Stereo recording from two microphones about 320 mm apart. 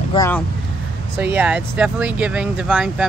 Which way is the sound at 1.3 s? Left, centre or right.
Centre.